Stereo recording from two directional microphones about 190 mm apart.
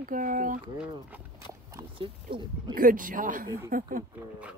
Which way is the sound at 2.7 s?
45° right (ahead or behind).